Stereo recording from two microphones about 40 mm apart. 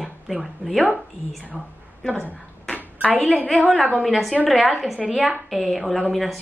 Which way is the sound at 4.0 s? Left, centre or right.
Centre.